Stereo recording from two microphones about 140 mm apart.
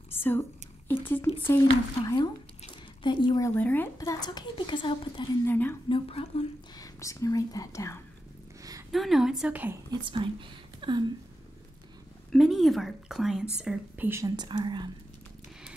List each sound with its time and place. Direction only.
0.1 s whispering: 15° left (ahead or behind)
3.0 s speech: 35° left (ahead or behind)
3.4 s speech: 15° left (ahead or behind); by 5.3 s 35° left (ahead or behind)
5.4 s speech: 15° left (ahead or behind)
5.9 s speech: 40° left (ahead or behind)
6.8 s speech: 20° left (ahead or behind)
8.9 s speech: centre (ahead or behind)
9.8 s speech: 35° right (ahead or behind)
10.8 s a sound: 35° right (ahead or behind)
12.3 s speech: centre (ahead or behind)
14.0 s speech: 20° right (ahead or behind)
14.3 s speech: 30° right (ahead or behind)